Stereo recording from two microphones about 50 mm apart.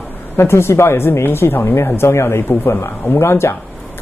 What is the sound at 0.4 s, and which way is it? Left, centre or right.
A woman's voice, left.